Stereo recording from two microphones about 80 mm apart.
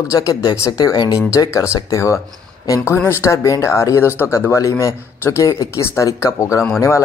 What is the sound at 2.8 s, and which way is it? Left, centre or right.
Speech, left.